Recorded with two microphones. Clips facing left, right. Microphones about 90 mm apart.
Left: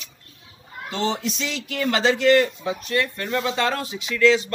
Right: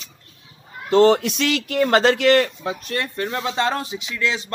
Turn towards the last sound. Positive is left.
turn(degrees=-25)  # may be behind; listen again after turning